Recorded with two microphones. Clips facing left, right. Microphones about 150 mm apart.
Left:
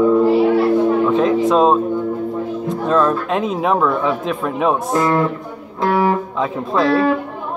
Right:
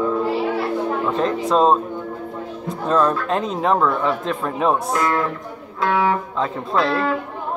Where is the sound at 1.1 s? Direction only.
5° left (ahead or behind).